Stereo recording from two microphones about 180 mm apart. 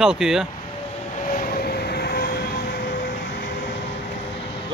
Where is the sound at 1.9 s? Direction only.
60° left (ahead or behind).